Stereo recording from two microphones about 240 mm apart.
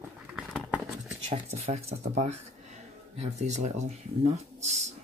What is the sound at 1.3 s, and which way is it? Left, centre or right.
Speech, right.